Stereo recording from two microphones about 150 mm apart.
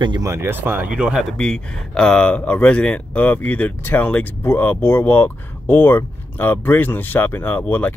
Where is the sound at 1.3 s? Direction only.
5° left (ahead or behind).